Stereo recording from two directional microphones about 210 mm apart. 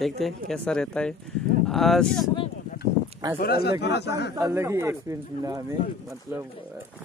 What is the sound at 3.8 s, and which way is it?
Speech, 55° left (ahead or behind).